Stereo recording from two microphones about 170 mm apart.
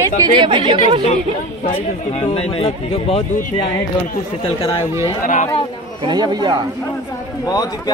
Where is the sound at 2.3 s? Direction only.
35° left (ahead or behind).